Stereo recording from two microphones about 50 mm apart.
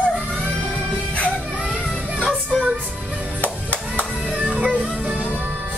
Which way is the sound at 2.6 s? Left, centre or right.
Right.